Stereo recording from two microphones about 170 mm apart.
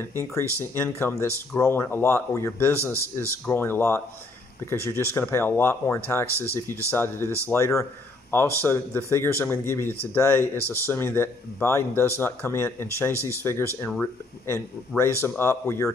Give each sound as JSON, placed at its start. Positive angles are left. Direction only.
{"t": 0.2, "sound": "a man's voice", "side_deg": 15}
{"t": 2.8, "sound": "speech", "side_deg": -15}
{"t": 3.2, "sound": "a man's voice", "side_deg": 15}
{"t": 13.1, "sound": "speech", "side_deg": -15}
{"t": 13.4, "sound": "a man's voice", "side_deg": 15}